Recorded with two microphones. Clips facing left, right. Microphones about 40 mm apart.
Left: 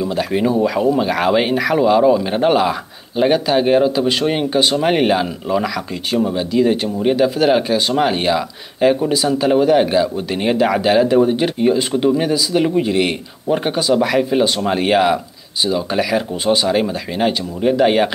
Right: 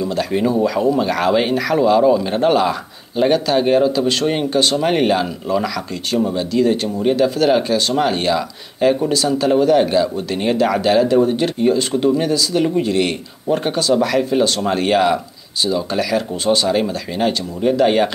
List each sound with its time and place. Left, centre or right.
0.0 s speech: centre